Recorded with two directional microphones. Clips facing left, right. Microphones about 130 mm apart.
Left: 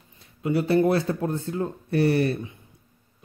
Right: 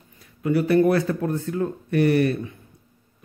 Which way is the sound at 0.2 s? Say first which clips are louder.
Right 3 dB; 25° left (ahead or behind).